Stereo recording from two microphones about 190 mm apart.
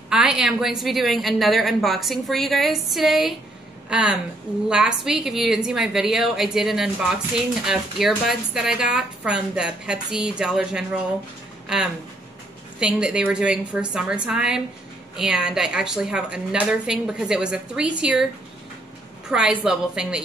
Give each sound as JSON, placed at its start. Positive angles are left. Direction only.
{"t": 0.1, "sound": "a woman's voice", "side_deg": -5}